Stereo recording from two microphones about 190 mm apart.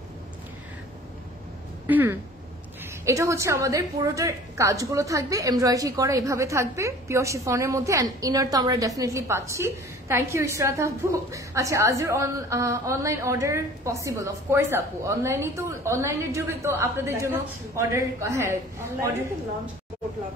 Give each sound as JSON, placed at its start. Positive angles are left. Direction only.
{"t": 1.9, "sound": "a woman's voice", "side_deg": -10}